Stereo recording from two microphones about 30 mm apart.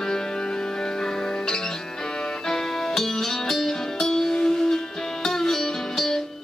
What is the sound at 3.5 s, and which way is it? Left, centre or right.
Music, centre.